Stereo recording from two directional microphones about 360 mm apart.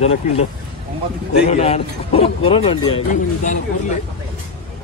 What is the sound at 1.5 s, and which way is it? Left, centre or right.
Speech, centre.